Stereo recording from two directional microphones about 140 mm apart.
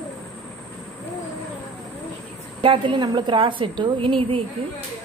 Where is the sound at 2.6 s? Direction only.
35° right (ahead or behind).